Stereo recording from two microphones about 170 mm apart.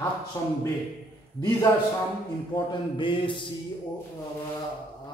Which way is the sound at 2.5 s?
30° left (ahead or behind).